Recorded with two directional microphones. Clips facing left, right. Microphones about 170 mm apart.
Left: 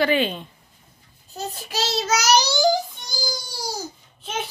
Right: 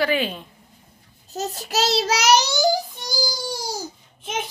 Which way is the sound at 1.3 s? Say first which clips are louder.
Right 3 dB; 40° right (ahead or behind).